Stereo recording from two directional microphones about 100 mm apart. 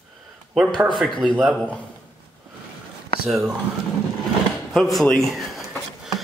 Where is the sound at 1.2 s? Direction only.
10° left (ahead or behind).